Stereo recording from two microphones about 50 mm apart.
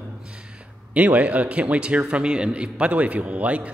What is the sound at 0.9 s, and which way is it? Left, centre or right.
A man's voice, right.